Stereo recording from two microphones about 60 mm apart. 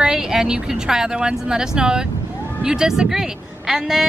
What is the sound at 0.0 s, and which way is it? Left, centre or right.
Speech, centre.